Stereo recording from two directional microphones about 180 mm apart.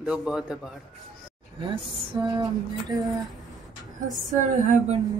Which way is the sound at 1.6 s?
25° right (ahead or behind).